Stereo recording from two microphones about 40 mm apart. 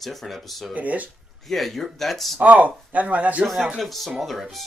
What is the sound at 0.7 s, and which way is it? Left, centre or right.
Speech, right.